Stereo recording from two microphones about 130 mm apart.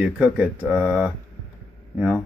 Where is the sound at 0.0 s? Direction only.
10° right (ahead or behind).